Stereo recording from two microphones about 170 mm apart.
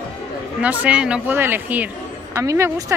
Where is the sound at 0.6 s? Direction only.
10° right (ahead or behind).